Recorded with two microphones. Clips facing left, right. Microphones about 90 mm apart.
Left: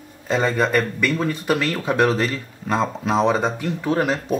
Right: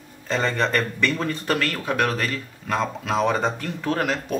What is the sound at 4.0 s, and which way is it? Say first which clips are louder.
Speech: left 3 dB; 25° left (ahead or behind).